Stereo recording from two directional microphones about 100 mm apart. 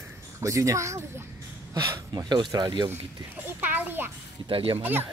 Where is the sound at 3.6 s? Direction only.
20° right (ahead or behind).